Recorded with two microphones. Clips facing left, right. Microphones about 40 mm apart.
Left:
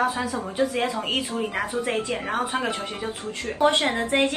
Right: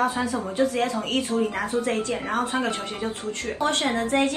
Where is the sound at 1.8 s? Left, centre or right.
Left.